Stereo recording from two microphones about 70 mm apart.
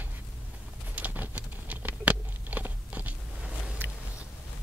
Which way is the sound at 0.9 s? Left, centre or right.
Right.